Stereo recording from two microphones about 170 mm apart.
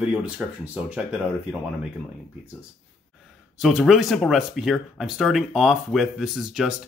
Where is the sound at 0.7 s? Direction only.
5° right (ahead or behind).